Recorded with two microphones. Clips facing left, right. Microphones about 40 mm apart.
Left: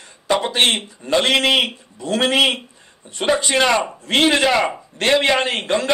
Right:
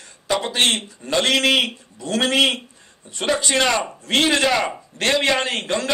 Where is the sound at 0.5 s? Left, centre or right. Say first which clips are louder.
Left 2 dB; centre.